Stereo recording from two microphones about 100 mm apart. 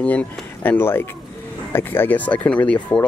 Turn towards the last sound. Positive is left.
turn(degrees=10)  # may be behind; listen again after turning